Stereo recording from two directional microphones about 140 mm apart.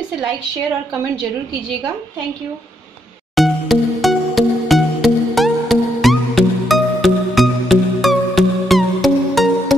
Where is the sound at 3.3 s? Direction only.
Centre (ahead or behind).